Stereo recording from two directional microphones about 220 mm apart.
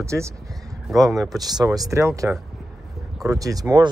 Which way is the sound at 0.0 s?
15° right (ahead or behind).